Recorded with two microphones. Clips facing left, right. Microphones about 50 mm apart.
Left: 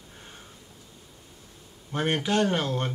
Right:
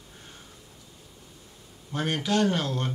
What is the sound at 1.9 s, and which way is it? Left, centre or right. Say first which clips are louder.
Speech: left 1 dB; left.